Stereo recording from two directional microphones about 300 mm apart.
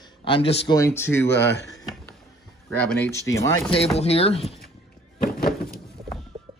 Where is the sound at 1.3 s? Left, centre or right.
Left.